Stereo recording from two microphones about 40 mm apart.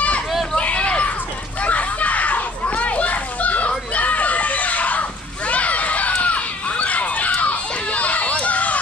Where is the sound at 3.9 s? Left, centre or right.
Left.